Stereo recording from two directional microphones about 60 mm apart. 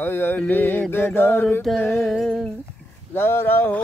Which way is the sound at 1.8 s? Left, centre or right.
Left.